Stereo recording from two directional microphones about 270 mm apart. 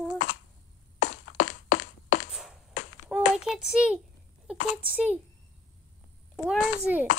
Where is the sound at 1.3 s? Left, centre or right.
Left.